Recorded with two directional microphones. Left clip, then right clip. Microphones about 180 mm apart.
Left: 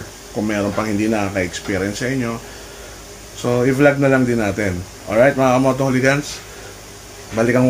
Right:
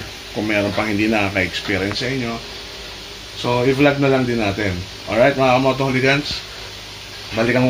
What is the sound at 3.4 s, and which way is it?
Speech, 5° left (ahead or behind).